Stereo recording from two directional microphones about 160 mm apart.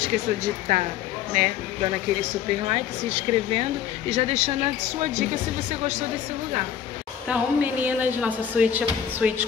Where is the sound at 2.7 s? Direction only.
40° right (ahead or behind).